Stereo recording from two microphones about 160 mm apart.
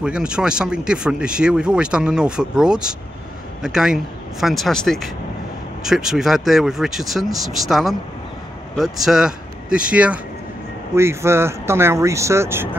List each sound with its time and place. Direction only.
0.0 s speech: 5° right (ahead or behind)